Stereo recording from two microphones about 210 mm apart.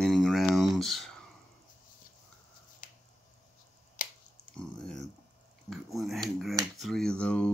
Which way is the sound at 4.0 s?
40° left (ahead or behind).